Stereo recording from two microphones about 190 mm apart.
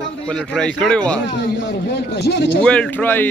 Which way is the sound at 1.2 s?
60° left (ahead or behind).